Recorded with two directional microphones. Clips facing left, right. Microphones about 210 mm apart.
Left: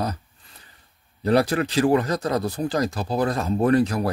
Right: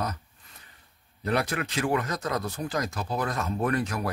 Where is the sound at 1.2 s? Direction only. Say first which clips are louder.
Left 8 dB; 35° left (ahead or behind).